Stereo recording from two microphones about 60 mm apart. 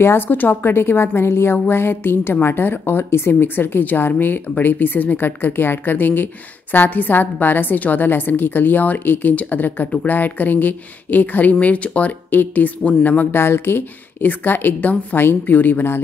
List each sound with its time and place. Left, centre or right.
0.0 s a woman's voice: left
13.4 s a woman's voice: left